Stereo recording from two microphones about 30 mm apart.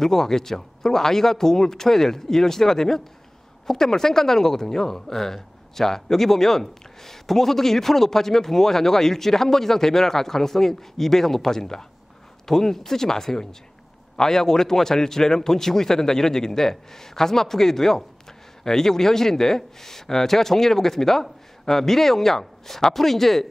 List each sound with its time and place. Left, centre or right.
0.0 s speech: centre